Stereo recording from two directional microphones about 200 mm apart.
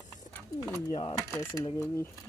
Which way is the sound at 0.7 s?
20° left (ahead or behind).